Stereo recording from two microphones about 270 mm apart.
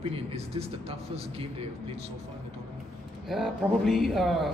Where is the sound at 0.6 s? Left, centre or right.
Right.